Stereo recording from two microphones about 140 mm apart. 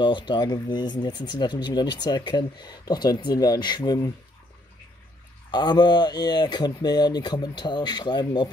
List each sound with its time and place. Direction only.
0.0 s speech: 35° left (ahead or behind)
5.5 s speech: 30° left (ahead or behind)